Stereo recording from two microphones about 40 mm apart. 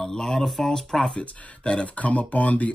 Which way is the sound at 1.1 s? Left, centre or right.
Left.